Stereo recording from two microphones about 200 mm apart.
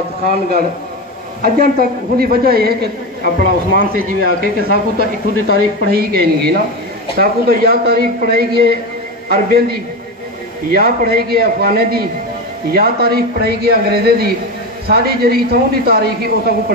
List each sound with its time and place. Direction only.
1.4 s speech: 50° right (ahead or behind)